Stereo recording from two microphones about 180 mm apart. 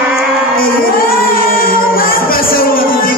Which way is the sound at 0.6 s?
55° left (ahead or behind).